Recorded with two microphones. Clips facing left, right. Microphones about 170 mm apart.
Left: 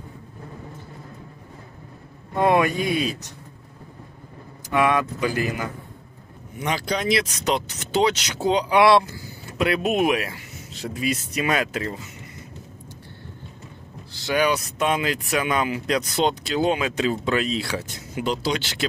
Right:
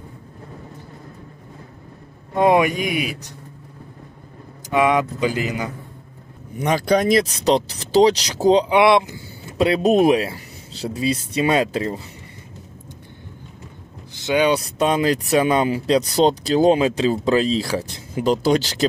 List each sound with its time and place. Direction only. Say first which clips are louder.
2.3 s speech: right 3 dB; 20° right (ahead or behind)
4.6 s speech: right 3 dB; 15° right (ahead or behind)
6.6 s speech: right 7 dB; 45° right (ahead or behind)
8.6 s speech: right 1 dB; 20° right (ahead or behind)
14.1 s a sound: right 4 dB; 20° right (ahead or behind)
14.5 s speech: right 4 dB; 35° right (ahead or behind)
18.3 s speech: right 9 dB; 45° right (ahead or behind)